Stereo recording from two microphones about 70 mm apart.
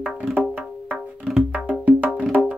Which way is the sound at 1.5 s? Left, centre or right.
Centre.